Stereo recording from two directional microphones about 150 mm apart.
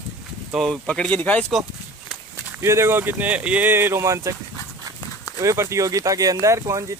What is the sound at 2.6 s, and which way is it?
Speech, 15° right (ahead or behind).